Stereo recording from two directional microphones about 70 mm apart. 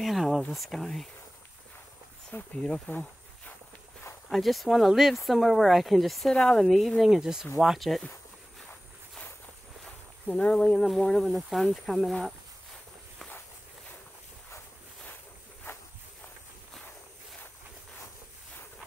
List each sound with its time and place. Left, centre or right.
0.0 s speech: centre
2.3 s speech: left
2.9 s insect: left
4.3 s speech: centre
10.2 s speech: centre
15.7 s walk: left